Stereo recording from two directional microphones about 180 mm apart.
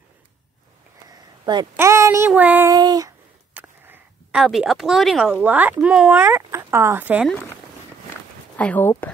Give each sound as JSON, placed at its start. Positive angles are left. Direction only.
{"t": 1.4, "sound": "a woman's voice", "side_deg": -25}
{"t": 1.8, "sound": "child singing", "side_deg": -15}
{"t": 2.7, "sound": "child singing", "side_deg": -20}
{"t": 3.5, "sound": "speech", "side_deg": -10}
{"t": 8.5, "sound": "speech", "side_deg": 10}